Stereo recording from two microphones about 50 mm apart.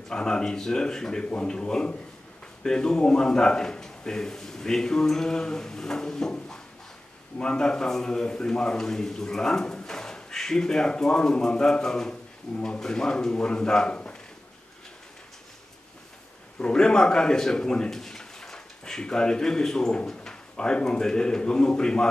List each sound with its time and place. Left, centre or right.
0.1 s a man's voice: centre
1.2 s a man's voice: left
16.5 s speech: centre